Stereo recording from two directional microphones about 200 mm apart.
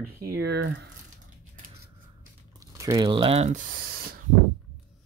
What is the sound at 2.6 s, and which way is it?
Speech, 15° right (ahead or behind).